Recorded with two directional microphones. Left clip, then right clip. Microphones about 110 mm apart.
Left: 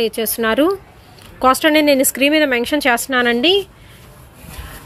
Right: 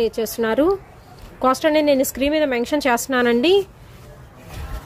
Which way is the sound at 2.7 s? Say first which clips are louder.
Left 2 dB; 5° left (ahead or behind).